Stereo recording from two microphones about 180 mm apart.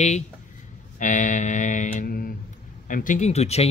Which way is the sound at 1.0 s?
45° left (ahead or behind).